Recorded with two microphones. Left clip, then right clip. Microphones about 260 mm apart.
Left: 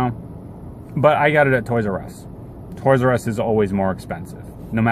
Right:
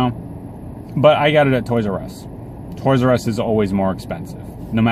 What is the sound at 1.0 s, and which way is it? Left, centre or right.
Speech, left.